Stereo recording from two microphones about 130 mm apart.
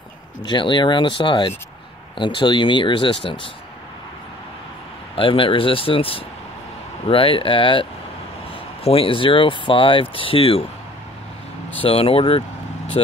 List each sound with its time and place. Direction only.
0.4 s speech: 35° left (ahead or behind)
5.1 s speech: 45° left (ahead or behind)
11.8 s speech: 45° left (ahead or behind)